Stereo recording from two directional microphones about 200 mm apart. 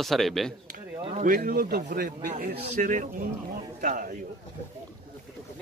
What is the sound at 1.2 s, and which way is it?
A man's voice, 45° right (ahead or behind).